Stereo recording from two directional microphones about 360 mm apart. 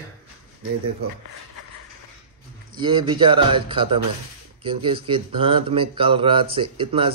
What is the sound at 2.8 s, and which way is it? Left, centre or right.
Speech, centre.